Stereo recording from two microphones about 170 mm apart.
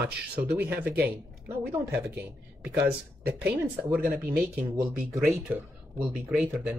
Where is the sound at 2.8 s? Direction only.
10° right (ahead or behind).